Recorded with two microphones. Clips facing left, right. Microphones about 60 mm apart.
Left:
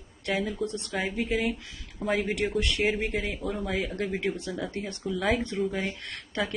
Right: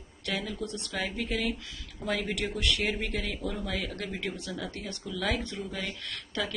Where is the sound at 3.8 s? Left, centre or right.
Left.